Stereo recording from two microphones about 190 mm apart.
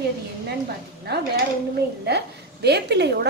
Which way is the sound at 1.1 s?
60° right (ahead or behind).